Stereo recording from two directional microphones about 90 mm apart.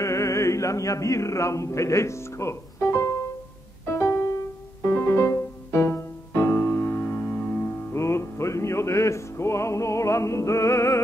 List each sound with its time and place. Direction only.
0.0 s speech: 35° left (ahead or behind)
3.9 s music: 30° left (ahead or behind)